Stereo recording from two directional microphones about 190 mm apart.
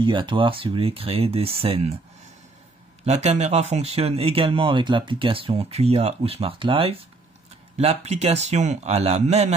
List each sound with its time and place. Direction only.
0.0 s speech: 25° right (ahead or behind)
3.1 s speech: 35° right (ahead or behind)